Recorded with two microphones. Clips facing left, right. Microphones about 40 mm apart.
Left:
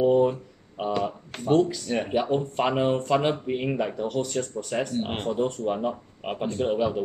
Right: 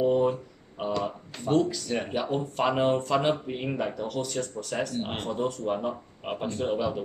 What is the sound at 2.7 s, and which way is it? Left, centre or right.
Speech, centre.